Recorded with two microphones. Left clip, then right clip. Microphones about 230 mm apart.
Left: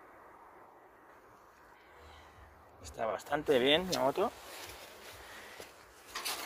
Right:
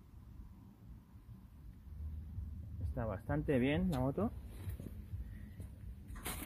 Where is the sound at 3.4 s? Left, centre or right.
Centre.